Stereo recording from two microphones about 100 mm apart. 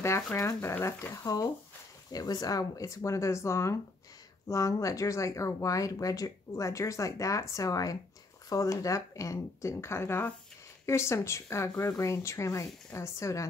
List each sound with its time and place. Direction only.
0.0 s speech: 30° left (ahead or behind)